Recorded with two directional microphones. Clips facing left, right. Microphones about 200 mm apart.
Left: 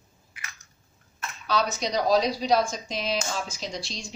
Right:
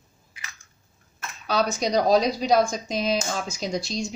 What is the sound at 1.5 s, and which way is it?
Speech, 50° right (ahead or behind).